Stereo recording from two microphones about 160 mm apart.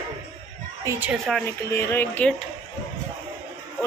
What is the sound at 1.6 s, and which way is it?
Speech, 15° left (ahead or behind).